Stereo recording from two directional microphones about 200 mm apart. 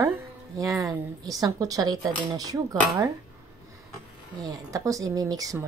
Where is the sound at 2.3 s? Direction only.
20° right (ahead or behind).